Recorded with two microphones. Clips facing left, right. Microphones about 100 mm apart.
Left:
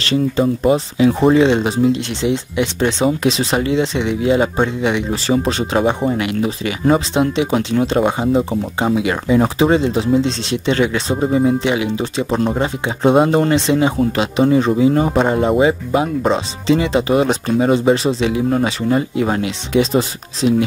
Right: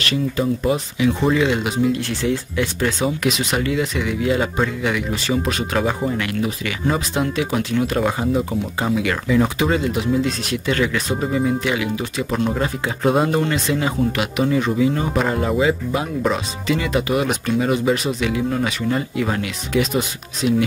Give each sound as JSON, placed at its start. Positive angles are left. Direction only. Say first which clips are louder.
{"t": 0.0, "sound": "speech", "louder": "left 5 dB", "side_deg": 30}